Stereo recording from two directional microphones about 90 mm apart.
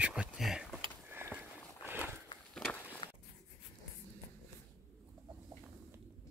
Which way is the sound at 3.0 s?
65° left (ahead or behind).